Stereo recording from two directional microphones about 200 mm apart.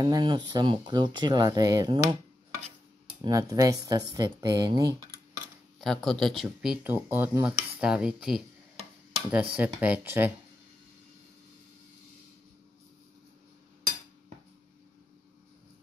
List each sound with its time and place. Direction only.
0.0 s speech: 20° right (ahead or behind)
3.2 s speech: 15° right (ahead or behind)
5.8 s cutlery: centre (ahead or behind)
9.3 s speech: 10° right (ahead or behind)